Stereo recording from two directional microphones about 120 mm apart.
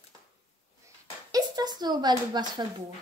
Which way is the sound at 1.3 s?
35° right (ahead or behind).